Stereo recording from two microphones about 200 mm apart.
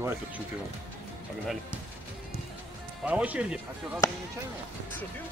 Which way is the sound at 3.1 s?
5° right (ahead or behind).